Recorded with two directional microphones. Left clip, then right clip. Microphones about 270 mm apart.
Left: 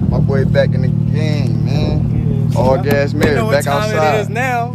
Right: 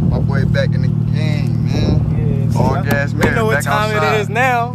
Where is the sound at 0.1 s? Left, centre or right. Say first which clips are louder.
Left 4 dB; centre.